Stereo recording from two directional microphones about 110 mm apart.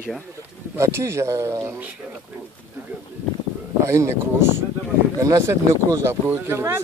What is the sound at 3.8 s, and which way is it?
Speech, 25° right (ahead or behind).